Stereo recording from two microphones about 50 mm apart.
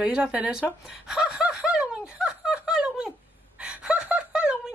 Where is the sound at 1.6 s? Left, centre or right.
Centre.